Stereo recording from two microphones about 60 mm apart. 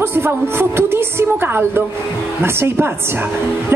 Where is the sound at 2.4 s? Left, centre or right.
Right.